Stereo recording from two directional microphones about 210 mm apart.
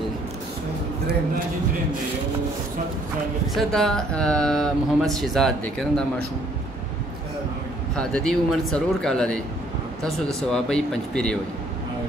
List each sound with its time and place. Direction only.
3.5 s speech: centre (ahead or behind)
7.9 s speech: 5° left (ahead or behind)